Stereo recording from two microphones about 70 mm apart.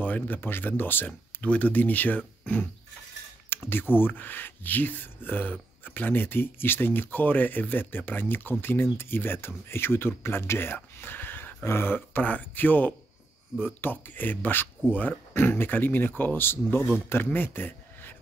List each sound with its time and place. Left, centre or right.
0.0 s speech: left
3.4 s a sound: left
3.9 s speech: left